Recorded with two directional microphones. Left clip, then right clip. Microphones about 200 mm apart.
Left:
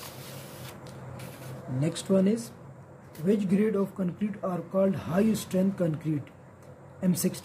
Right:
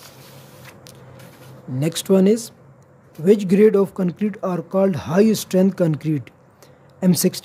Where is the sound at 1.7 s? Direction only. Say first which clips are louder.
Right 9 dB; 55° right (ahead or behind).